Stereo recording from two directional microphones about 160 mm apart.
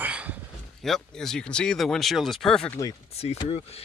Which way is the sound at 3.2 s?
40° left (ahead or behind).